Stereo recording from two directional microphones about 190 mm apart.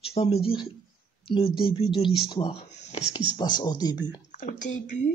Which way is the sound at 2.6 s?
35° left (ahead or behind).